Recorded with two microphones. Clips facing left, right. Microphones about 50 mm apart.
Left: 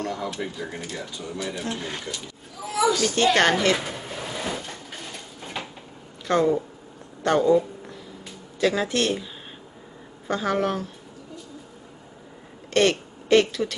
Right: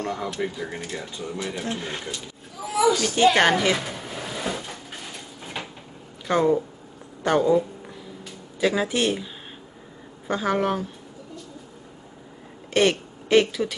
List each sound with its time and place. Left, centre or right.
0.0 s a sound: right
0.4 s speech: centre
3.7 s drawer open or close: centre
6.2 s speech: centre
12.7 s a woman's voice: centre